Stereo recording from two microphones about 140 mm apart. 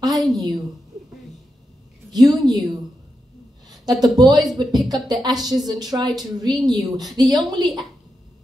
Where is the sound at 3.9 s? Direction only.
30° right (ahead or behind).